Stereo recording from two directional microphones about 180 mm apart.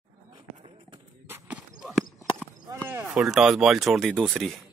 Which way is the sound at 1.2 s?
10° right (ahead or behind).